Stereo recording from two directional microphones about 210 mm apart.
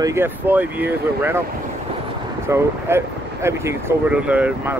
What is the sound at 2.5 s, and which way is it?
Speech, 10° right (ahead or behind).